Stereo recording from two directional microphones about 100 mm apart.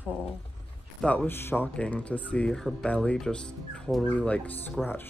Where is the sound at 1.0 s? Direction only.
15° left (ahead or behind).